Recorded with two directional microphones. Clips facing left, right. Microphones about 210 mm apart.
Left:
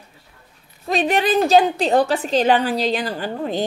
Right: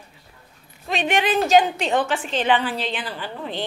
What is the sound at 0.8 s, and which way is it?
A woman's voice, 40° left (ahead or behind).